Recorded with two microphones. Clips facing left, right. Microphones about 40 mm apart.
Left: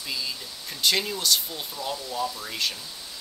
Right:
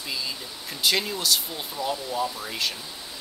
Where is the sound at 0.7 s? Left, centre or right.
Centre.